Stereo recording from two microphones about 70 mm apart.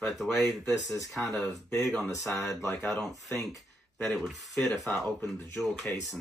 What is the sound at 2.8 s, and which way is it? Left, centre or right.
Speech, centre.